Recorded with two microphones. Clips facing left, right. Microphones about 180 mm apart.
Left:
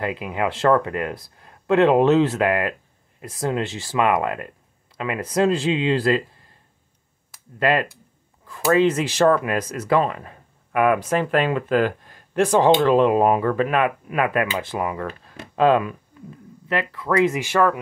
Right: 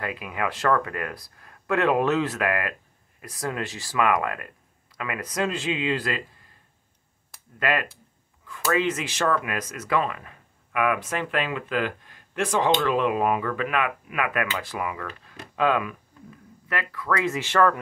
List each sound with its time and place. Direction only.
0.0 s speech: 25° left (ahead or behind)
7.5 s speech: 30° left (ahead or behind); by 17.7 s 10° left (ahead or behind)